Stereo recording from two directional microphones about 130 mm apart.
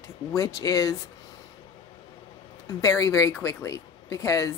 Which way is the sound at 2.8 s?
25° left (ahead or behind).